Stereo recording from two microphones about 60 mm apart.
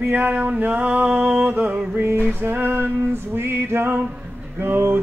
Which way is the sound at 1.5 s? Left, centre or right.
Right.